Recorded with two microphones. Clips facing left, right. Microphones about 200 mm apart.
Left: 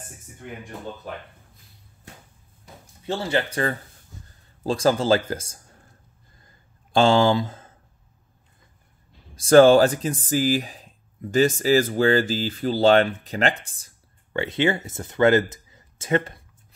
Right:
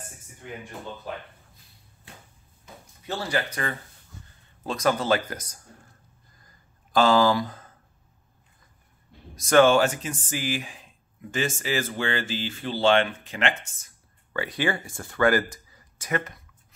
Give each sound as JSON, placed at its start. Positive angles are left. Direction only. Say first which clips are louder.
{"t": 3.1, "sound": "speech", "louder": "left 4 dB", "side_deg": 25}
{"t": 6.4, "sound": "a sound", "louder": "left 2 dB", "side_deg": 25}
{"t": 9.3, "sound": "speech", "louder": "left 5 dB", "side_deg": 30}